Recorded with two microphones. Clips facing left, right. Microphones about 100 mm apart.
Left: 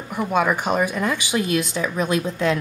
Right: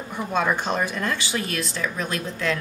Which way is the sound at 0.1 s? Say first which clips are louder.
Left 4 dB; 10° left (ahead or behind).